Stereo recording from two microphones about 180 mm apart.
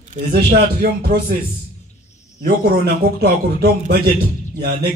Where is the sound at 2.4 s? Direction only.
55° right (ahead or behind).